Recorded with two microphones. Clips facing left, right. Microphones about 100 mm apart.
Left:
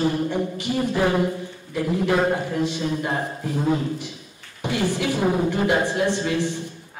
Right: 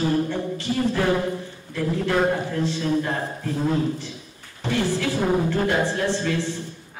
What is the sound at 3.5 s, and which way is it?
A man's voice, 15° left (ahead or behind).